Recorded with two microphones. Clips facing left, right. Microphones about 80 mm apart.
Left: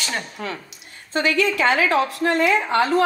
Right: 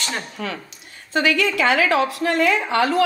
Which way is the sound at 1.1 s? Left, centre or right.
Left.